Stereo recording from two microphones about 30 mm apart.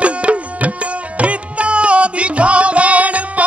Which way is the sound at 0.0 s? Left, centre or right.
Right.